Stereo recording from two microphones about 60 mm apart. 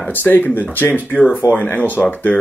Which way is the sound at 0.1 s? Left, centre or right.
Left.